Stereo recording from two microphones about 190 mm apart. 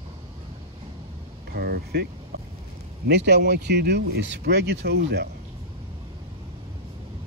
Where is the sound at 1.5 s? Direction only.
55° right (ahead or behind).